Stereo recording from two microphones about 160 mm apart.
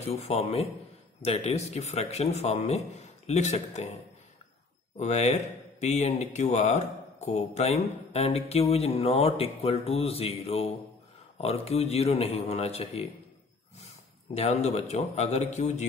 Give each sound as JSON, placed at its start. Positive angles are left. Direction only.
{"t": 0.0, "sound": "speech", "side_deg": 40}
{"t": 4.9, "sound": "speech", "side_deg": 45}
{"t": 14.3, "sound": "speech", "side_deg": 40}